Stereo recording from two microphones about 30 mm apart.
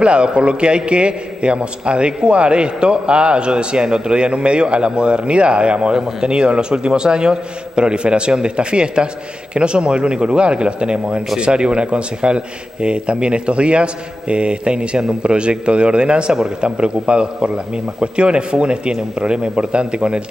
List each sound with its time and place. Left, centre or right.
0.0 s a man's voice: right